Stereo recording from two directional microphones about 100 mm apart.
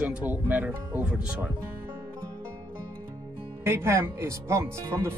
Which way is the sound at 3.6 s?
25° right (ahead or behind).